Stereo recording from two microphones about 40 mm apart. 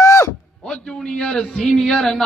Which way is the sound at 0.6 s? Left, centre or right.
Left.